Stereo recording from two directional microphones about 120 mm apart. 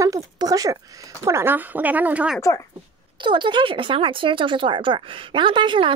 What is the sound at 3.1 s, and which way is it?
Speech, 40° right (ahead or behind).